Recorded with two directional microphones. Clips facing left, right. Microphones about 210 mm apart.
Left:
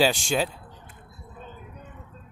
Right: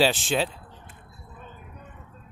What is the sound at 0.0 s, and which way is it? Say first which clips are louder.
Speech: even; centre (ahead or behind).